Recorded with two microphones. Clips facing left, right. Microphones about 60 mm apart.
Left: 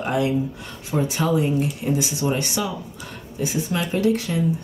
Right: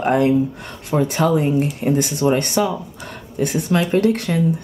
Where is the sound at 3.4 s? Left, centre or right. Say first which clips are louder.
Right 6 dB; right.